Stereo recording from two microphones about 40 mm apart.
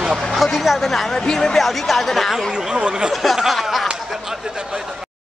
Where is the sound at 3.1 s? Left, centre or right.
Centre.